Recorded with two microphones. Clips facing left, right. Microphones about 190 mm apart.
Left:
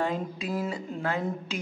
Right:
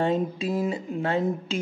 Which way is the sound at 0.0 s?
25° right (ahead or behind).